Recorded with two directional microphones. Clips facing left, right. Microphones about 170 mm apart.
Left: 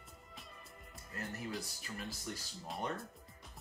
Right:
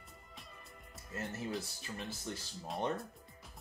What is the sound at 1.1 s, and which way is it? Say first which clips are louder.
Speech: right 3 dB; 25° right (ahead or behind).